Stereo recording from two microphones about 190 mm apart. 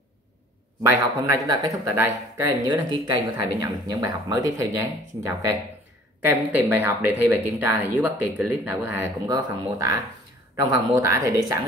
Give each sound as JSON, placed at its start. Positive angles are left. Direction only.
{"t": 0.8, "sound": "speech", "side_deg": -15}